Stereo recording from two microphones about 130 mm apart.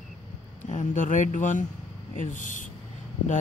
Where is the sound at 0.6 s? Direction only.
75° left (ahead or behind).